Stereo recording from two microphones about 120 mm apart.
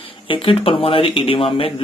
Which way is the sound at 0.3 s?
50° left (ahead or behind).